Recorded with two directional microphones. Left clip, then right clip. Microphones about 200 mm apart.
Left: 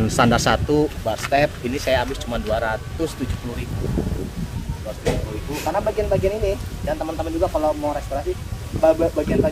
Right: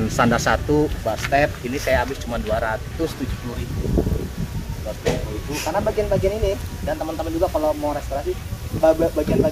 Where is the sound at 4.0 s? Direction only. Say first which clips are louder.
Right 5 dB; centre (ahead or behind).